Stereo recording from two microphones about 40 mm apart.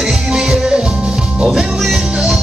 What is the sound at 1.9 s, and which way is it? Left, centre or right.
Music, centre.